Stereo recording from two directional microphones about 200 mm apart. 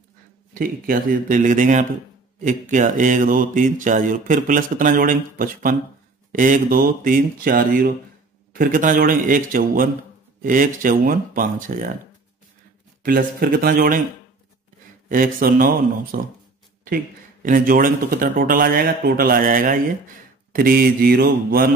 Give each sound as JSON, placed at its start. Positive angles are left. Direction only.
{"t": 0.6, "sound": "mantra", "side_deg": -45}
{"t": 6.3, "sound": "speech", "side_deg": -40}
{"t": 13.0, "sound": "speech", "side_deg": -45}
{"t": 15.0, "sound": "speech", "side_deg": -45}